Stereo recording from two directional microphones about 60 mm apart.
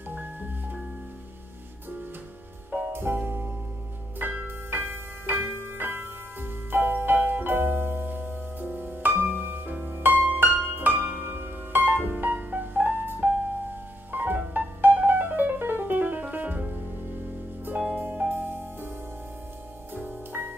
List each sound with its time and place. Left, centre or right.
0.1 s music: right
2.9 s music: right
4.2 s music: right
10.8 s harp: right
11.8 s piano: right
14.1 s music: right
17.9 s music: right
20.0 s music: right